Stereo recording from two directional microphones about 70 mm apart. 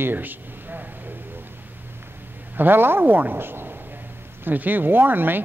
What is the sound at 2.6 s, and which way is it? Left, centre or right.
Speech, right.